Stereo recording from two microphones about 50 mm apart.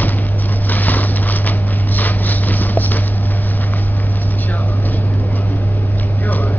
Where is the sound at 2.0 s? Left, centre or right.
Left.